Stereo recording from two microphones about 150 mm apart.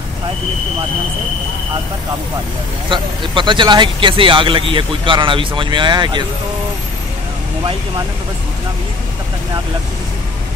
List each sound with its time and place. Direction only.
2.9 s speech: 35° right (ahead or behind)